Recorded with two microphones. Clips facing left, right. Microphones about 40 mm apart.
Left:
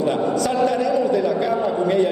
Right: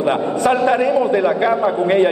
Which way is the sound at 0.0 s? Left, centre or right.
Right.